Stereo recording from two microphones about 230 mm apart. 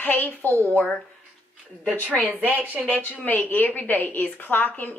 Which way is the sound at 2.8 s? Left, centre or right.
Centre.